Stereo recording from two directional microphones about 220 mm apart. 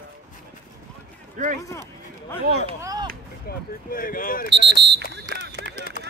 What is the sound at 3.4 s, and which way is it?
Speech, 40° left (ahead or behind).